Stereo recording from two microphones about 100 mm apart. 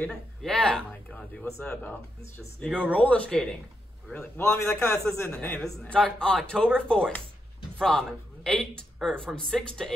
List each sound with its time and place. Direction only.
0.0 s speech: 5° left (ahead or behind)
4.4 s a man's voice: 25° left (ahead or behind)
5.6 s speech: 5° left (ahead or behind)
8.5 s speech: 10° left (ahead or behind)